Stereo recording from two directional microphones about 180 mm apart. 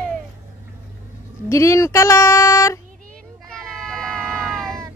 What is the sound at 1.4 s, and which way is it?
Speech, 15° left (ahead or behind).